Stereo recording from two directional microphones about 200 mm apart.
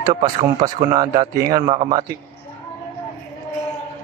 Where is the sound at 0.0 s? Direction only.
20° right (ahead or behind).